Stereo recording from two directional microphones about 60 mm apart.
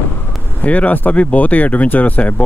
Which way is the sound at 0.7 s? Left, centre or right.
Left.